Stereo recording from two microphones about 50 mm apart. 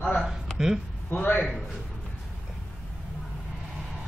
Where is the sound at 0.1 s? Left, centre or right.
Centre.